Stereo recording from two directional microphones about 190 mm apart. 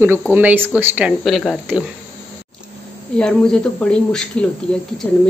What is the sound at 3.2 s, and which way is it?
Speech, 5° left (ahead or behind).